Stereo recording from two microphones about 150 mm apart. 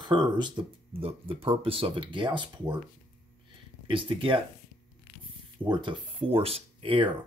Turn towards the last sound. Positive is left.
turn(degrees=-35)  # may be behind; listen again after turning